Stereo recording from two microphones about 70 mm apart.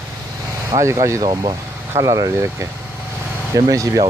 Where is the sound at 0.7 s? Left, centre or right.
Right.